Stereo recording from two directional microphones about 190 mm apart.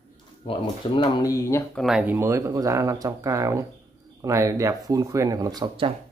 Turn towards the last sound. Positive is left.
turn(degrees=-25)  # may be behind; listen again after turning